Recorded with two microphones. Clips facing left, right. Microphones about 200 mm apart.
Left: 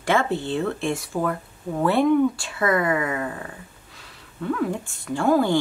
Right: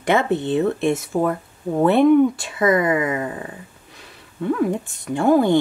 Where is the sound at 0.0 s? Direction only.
20° right (ahead or behind).